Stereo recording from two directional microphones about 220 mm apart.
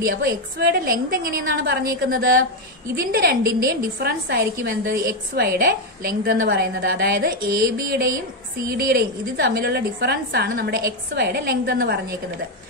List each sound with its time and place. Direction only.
0.0 s a woman's voice: 45° right (ahead or behind)